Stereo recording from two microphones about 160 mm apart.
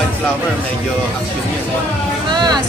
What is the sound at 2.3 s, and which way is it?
Speech, 25° right (ahead or behind).